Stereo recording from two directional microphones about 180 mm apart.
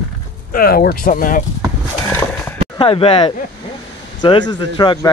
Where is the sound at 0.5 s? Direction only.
55° left (ahead or behind).